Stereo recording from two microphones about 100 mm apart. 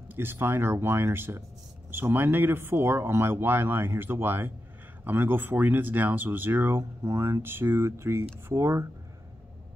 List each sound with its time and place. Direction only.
0.1 s speech: 25° right (ahead or behind)